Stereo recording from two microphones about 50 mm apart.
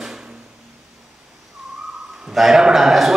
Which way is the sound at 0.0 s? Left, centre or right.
Centre.